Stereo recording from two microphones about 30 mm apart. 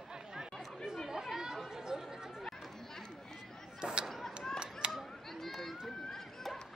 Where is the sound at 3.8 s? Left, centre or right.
Right.